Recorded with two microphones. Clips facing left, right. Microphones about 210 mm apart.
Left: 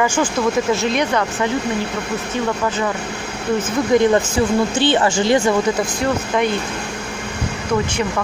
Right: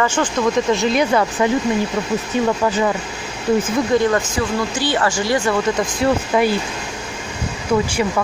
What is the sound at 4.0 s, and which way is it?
Speech, 25° left (ahead or behind).